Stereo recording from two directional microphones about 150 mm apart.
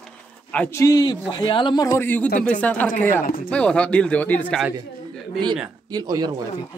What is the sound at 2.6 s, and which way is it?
Speech, 10° left (ahead or behind).